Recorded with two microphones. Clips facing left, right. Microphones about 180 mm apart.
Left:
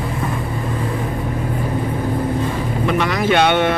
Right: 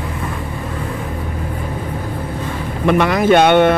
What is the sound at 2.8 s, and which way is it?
Speech, 55° right (ahead or behind).